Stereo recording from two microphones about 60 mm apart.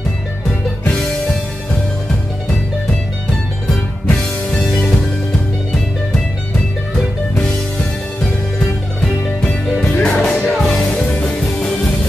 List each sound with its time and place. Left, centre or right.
0.8 s music: centre
4.1 s music: centre
9.4 s music: centre
10.1 s music: left
10.6 s music: centre